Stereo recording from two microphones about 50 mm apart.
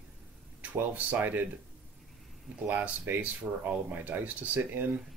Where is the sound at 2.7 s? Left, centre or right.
Right.